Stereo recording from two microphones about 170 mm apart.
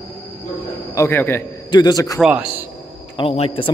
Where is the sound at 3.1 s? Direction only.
35° left (ahead or behind).